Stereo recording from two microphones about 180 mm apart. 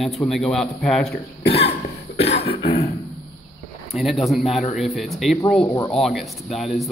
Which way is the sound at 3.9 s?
Centre (ahead or behind).